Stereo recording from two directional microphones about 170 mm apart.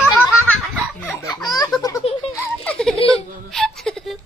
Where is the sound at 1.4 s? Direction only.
25° left (ahead or behind).